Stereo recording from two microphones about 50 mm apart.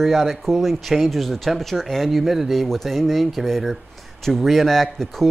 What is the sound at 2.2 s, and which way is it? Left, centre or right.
Speech, centre.